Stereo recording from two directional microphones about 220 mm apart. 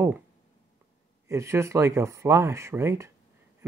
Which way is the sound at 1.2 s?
15° right (ahead or behind).